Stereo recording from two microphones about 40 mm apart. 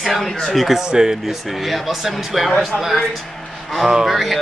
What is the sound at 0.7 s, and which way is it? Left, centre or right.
Speech, centre.